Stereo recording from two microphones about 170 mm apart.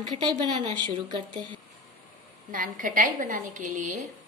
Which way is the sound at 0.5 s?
25° right (ahead or behind).